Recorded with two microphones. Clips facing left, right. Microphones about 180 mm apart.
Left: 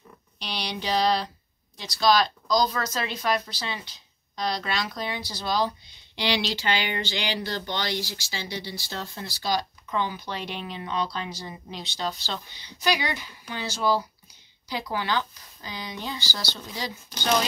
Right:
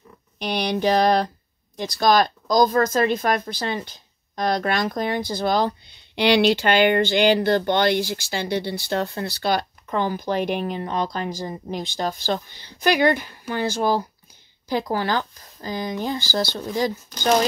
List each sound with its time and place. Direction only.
0.4 s speech: 50° right (ahead or behind)